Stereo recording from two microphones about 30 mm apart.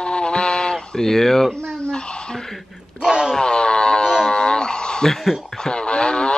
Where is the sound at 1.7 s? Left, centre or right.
Left.